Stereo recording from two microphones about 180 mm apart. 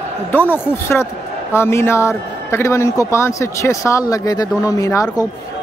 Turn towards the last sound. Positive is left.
turn(degrees=15)  # may be behind; listen again after turning